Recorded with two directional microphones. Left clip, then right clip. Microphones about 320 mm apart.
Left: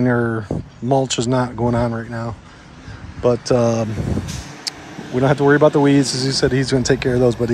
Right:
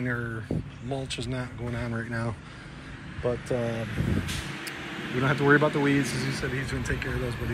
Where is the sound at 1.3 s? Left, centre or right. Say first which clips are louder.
Left 16 dB; centre.